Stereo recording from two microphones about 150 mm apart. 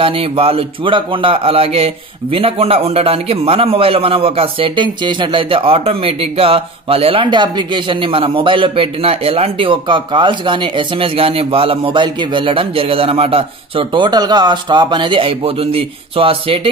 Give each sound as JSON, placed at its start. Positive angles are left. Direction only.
{"t": 0.0, "sound": "a man's voice", "side_deg": -40}